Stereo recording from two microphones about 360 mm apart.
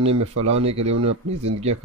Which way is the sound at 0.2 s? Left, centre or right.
Right.